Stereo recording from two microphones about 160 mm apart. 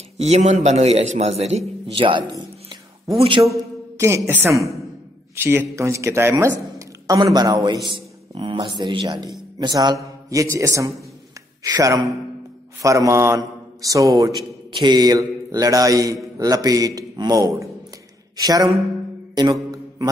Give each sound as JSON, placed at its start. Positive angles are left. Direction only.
{"t": 0.2, "sound": "a man's voice", "side_deg": -45}
{"t": 2.0, "sound": "a man's voice", "side_deg": -30}
{"t": 4.0, "sound": "a man's voice", "side_deg": -15}